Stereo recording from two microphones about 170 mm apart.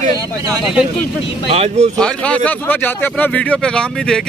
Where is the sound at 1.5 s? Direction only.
40° right (ahead or behind).